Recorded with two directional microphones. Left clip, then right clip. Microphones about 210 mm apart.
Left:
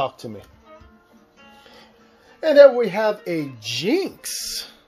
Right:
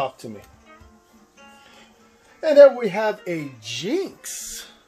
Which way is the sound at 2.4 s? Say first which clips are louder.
Left 1 dB; 40° left (ahead or behind).